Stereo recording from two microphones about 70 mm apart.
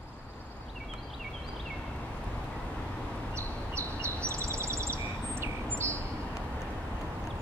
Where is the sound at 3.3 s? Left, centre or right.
Right.